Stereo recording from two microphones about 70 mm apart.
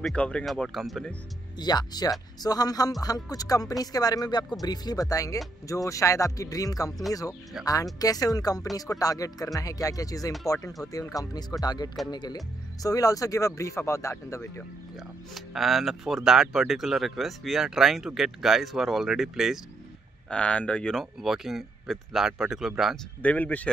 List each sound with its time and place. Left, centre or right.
0.1 s speech: centre
0.7 s speech: centre
1.6 s speech: left
12.8 s speech: left
13.6 s speech: left
15.0 s speech: centre
20.2 s speech: centre
20.9 s speech: centre
23.2 s speech: left